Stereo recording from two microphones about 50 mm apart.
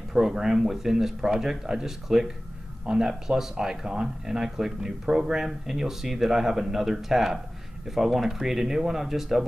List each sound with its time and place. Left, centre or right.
0.1 s speech: centre